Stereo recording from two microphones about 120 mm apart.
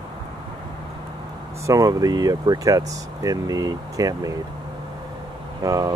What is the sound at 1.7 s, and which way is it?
Speech, 30° right (ahead or behind).